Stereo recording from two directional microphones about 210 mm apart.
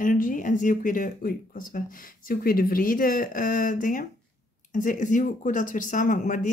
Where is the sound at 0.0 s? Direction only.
40° left (ahead or behind).